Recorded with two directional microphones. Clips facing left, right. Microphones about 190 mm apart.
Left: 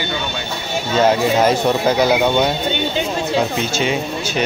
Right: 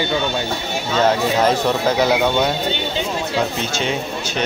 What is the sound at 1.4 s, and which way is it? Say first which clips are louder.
Speech: left 2 dB; 5° left (ahead or behind).